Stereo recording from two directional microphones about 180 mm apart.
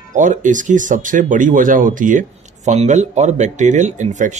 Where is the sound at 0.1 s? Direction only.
45° right (ahead or behind).